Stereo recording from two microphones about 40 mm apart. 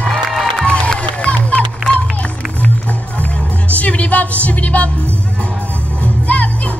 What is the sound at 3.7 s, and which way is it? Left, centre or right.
Music, left.